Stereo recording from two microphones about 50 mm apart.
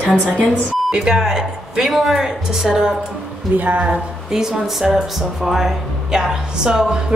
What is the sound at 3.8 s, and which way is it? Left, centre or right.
Speech, centre.